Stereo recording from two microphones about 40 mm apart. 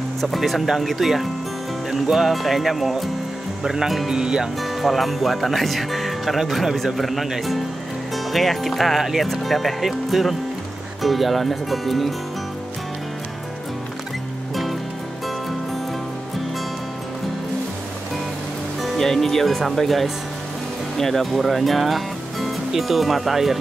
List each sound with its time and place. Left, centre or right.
0.4 s speech: centre
4.1 s speech: centre
4.6 s speech: centre
14.5 s music: centre
18.8 s speech: centre